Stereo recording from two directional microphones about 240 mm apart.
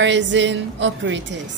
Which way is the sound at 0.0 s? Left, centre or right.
Right.